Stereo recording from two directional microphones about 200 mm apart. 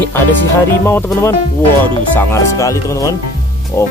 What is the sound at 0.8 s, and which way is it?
Speech, 15° left (ahead or behind).